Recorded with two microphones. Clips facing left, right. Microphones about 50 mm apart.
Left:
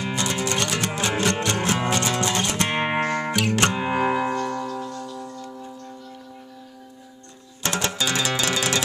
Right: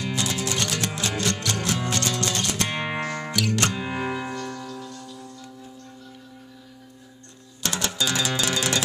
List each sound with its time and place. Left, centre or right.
0.1 s music: centre
0.9 s music: left
1.9 s music: centre
2.5 s music: left
7.6 s music: left
8.4 s music: centre